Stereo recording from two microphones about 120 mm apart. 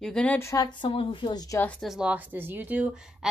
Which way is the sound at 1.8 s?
5° right (ahead or behind).